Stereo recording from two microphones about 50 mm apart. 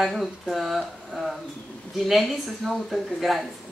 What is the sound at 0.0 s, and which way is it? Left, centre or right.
Speech, centre.